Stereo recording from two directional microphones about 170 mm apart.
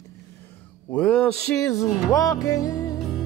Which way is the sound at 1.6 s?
20° left (ahead or behind).